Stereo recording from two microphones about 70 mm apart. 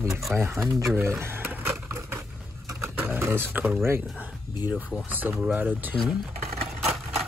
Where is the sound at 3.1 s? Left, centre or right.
Right.